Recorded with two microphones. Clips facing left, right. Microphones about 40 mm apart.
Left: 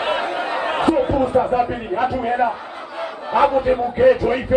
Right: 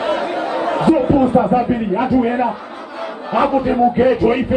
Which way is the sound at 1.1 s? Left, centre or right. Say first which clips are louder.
Right 4 dB; right.